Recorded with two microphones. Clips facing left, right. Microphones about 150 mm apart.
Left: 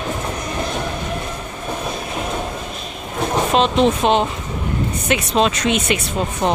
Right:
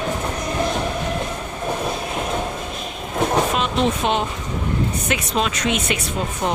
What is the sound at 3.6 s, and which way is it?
Speech, 30° left (ahead or behind).